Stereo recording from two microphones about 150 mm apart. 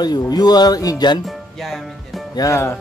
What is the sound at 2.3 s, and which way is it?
Speech, 20° left (ahead or behind).